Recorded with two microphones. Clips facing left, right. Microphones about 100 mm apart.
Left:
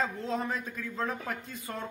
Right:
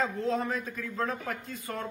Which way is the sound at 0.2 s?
20° left (ahead or behind).